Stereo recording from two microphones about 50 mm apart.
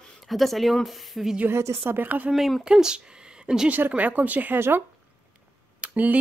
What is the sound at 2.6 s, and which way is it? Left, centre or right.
Speech, centre.